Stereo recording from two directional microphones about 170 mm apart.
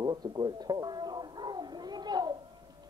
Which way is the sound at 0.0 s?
25° right (ahead or behind).